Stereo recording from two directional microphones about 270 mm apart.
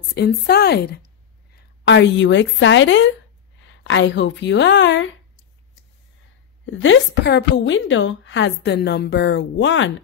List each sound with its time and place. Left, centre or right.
0.1 s a woman's voice: left
6.6 s a woman's voice: left